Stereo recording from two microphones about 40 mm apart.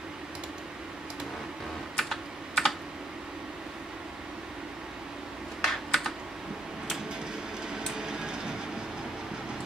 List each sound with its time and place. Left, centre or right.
2.0 s computer keyboard: centre
5.6 s computer keyboard: centre
7.7 s a sound: centre